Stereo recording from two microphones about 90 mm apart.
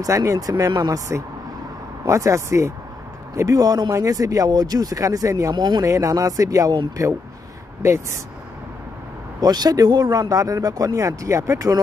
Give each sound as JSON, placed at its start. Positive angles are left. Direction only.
{"t": 0.0, "sound": "speech", "side_deg": -40}
{"t": 5.6, "sound": "speech", "side_deg": -50}
{"t": 5.9, "sound": "speech", "side_deg": -40}
{"t": 9.4, "sound": "speech", "side_deg": -50}